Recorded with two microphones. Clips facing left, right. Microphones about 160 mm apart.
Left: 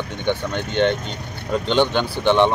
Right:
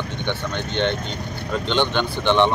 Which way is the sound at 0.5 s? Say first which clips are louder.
Left 3 dB; 45° left (ahead or behind).